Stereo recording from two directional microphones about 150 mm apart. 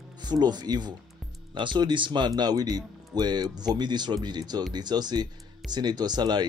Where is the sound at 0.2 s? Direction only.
30° right (ahead or behind).